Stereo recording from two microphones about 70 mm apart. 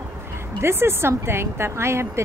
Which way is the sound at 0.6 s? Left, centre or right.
Right.